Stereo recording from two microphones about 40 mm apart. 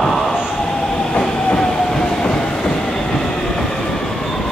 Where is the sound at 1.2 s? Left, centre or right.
Centre.